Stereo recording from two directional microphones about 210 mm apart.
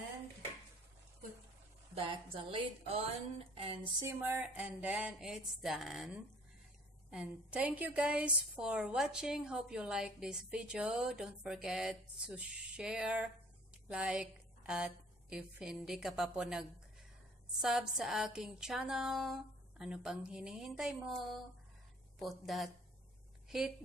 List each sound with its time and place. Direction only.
2.0 s speech: 25° right (ahead or behind)
3.8 s a woman's voice: 10° right (ahead or behind)